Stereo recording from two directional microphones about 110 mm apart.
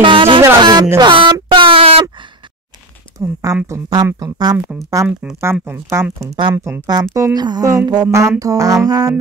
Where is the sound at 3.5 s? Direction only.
30° right (ahead or behind).